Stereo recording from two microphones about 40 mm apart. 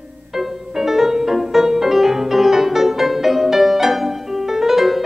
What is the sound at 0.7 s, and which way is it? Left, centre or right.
Music, centre.